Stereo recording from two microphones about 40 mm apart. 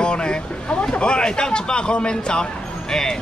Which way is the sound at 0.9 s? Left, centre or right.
Left.